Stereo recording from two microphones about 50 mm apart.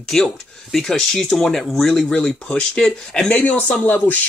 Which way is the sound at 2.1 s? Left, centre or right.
Centre.